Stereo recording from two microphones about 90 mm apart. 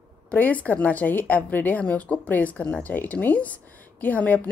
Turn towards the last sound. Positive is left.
turn(degrees=15)  # may be behind; listen again after turning